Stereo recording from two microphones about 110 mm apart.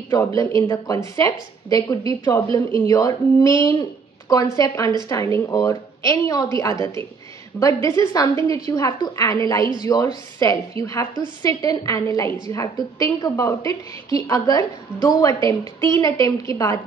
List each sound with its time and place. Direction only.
0.6 s a woman's voice: 35° left (ahead or behind)